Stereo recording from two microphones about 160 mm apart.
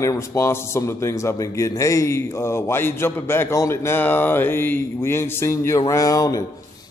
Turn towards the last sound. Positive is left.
turn(degrees=20)  # may be behind; listen again after turning